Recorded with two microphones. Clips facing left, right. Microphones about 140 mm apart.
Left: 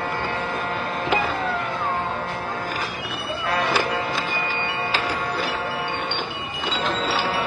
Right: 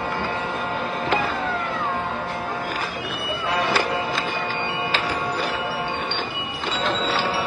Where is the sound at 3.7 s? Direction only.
10° left (ahead or behind).